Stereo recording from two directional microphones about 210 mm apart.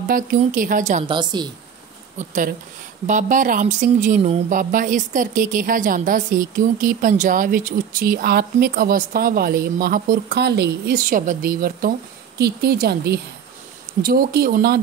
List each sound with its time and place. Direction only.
0.1 s speech: 40° right (ahead or behind)
1.0 s a woman's voice: 20° right (ahead or behind)
2.1 s speech: 40° right (ahead or behind)